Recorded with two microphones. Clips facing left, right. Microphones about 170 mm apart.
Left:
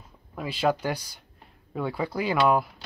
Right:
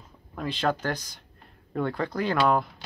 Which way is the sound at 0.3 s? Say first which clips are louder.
Left 2 dB; 5° left (ahead or behind).